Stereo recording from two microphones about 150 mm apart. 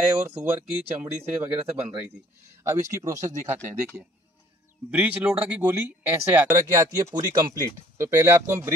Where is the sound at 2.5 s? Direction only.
20° right (ahead or behind).